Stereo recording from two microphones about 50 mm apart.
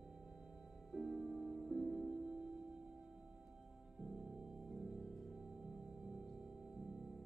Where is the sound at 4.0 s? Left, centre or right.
Centre.